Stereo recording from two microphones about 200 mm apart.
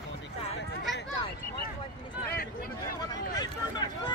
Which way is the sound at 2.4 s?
45° left (ahead or behind).